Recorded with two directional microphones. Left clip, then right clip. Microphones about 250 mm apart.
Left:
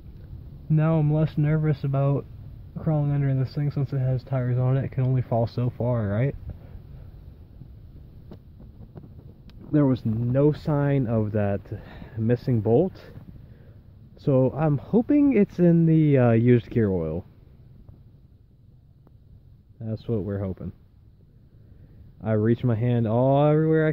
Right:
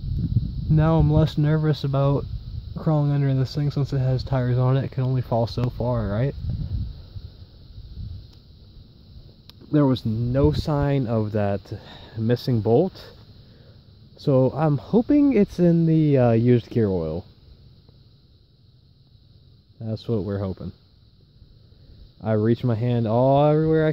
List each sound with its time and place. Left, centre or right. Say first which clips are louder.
0.7 s speech: right 3 dB; centre
9.5 s speech: right 2 dB; centre
14.1 s speech: right 2 dB; centre
19.8 s speech: right 2 dB; centre
22.2 s speech: right 2 dB; centre